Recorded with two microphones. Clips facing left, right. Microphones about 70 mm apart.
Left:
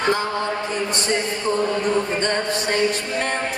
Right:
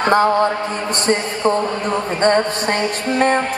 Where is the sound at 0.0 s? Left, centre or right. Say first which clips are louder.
Right 8 dB; right.